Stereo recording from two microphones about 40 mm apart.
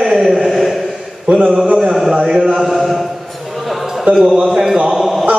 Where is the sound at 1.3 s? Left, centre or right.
Right.